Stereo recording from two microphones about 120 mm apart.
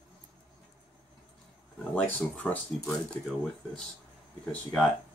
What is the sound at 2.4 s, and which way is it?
Speech, 15° left (ahead or behind).